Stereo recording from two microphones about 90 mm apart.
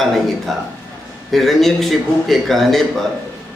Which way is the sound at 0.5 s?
Centre (ahead or behind).